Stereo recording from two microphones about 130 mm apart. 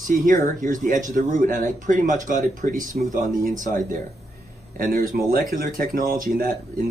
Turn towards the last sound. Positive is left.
turn(degrees=-90)